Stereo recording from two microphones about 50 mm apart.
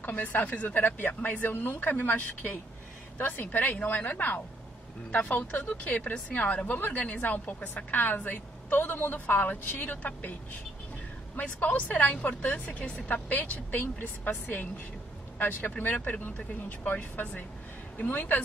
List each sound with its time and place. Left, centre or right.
0.0 s a woman's voice: left
11.3 s a woman's voice: left
15.3 s a woman's voice: left